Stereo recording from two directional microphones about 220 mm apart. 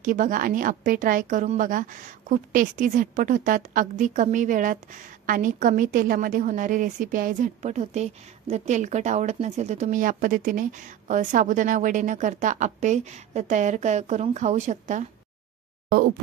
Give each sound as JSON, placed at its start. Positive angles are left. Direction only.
{"t": 0.0, "sound": "a woman's voice", "side_deg": -35}